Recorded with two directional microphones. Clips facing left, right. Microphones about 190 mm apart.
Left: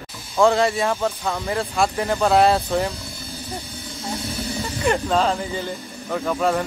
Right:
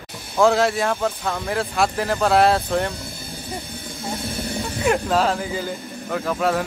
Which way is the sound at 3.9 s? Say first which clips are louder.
Even; 55° right (ahead or behind).